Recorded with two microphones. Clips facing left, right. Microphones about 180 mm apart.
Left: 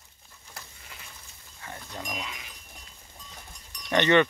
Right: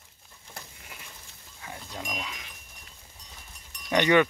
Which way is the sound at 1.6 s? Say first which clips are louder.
Even; 5° right (ahead or behind).